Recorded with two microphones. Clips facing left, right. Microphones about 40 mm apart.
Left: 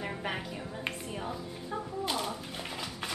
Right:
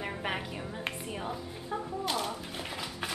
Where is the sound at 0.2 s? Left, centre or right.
Centre.